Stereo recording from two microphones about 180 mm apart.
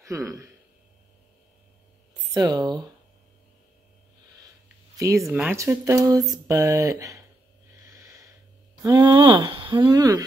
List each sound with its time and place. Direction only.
0.0 s a man's voice: 15° right (ahead or behind)
2.3 s speech: 20° right (ahead or behind)
4.9 s speech: 20° right (ahead or behind)
7.8 s snort: 20° right (ahead or behind)
8.8 s speech: 20° right (ahead or behind)